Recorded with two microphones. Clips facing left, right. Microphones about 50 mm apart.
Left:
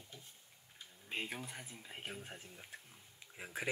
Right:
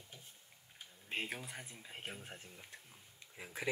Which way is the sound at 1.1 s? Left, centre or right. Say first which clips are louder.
Right 1 dB; centre.